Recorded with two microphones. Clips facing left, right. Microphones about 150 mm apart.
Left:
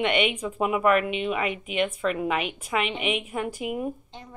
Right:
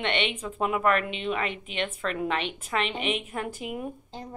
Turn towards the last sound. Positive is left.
turn(degrees=5)  # may be behind; listen again after turning